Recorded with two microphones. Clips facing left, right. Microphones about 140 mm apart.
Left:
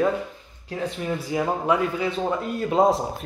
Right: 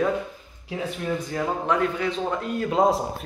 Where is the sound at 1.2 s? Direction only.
10° left (ahead or behind).